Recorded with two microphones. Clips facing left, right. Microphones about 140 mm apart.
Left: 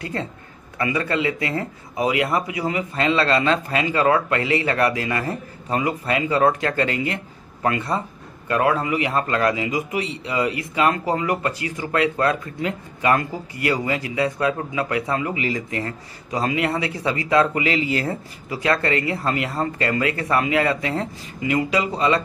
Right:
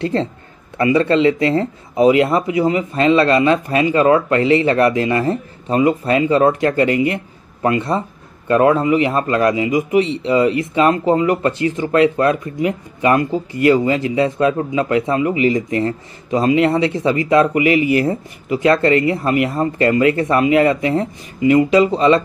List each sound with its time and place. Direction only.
0.0 s a man's voice: 25° right (ahead or behind)